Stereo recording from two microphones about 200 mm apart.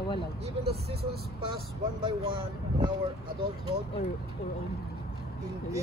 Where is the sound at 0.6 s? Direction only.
55° right (ahead or behind).